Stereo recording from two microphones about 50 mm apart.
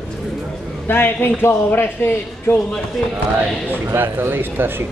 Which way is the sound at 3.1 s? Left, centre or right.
Right.